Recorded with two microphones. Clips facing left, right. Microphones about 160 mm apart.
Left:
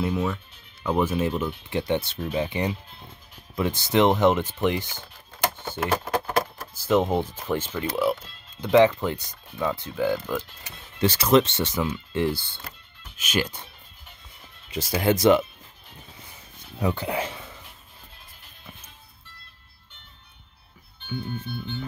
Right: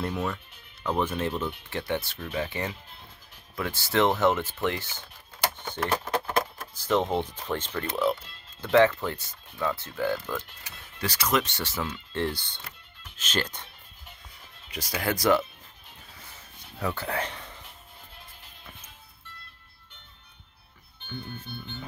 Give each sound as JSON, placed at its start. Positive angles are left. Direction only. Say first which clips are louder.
{"t": 0.0, "sound": "speech", "louder": "left 4 dB", "side_deg": 5}
{"t": 8.5, "sound": "speech", "louder": "left 3 dB", "side_deg": 15}
{"t": 11.0, "sound": "speech", "louder": "left 8 dB", "side_deg": 30}
{"t": 14.7, "sound": "speech", "louder": "left 7 dB", "side_deg": 25}
{"t": 16.8, "sound": "speech", "louder": "left 4 dB", "side_deg": 15}